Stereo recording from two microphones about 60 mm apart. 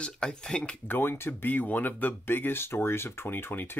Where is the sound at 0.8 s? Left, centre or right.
Left.